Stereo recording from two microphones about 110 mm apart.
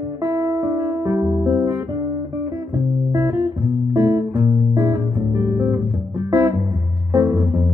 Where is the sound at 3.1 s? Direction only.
25° right (ahead or behind).